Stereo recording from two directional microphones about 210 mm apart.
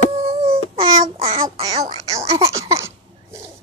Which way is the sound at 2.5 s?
15° right (ahead or behind).